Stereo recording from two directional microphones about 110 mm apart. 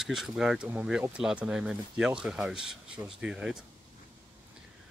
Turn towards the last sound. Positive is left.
turn(degrees=-10)  # may be behind; listen again after turning